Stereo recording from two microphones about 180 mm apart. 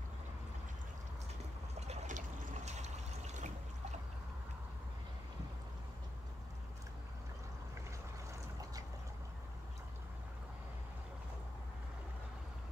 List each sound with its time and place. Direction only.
1.8 s trickle: 35° right (ahead or behind)